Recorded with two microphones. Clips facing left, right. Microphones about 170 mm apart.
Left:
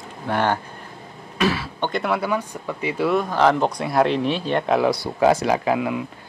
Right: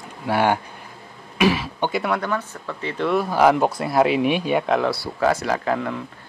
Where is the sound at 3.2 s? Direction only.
10° right (ahead or behind).